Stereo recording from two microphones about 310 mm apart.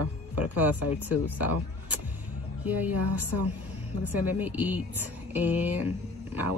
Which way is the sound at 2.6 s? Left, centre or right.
Centre.